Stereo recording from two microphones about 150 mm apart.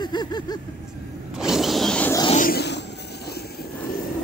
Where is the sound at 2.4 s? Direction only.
70° left (ahead or behind).